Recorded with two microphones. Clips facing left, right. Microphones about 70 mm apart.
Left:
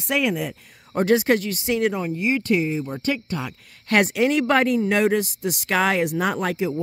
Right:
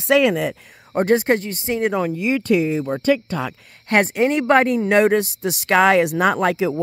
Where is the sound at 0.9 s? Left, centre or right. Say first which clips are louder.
Right 2 dB; right.